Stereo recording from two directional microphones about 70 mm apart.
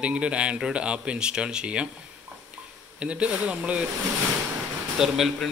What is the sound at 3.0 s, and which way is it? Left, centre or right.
Speech, centre.